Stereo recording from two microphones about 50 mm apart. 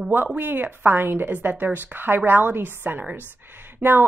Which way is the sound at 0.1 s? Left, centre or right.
Right.